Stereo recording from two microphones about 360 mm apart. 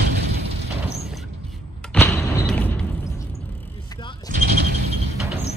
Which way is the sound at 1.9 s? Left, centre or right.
Centre.